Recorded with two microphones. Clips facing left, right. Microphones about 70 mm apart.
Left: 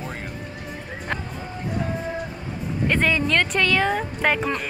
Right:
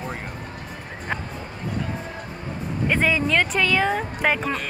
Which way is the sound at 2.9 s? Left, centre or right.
Centre.